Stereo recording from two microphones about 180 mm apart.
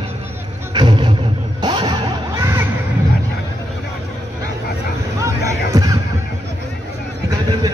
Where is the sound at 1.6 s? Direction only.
25° right (ahead or behind).